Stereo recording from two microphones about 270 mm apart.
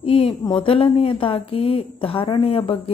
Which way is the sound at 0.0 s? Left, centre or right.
Left.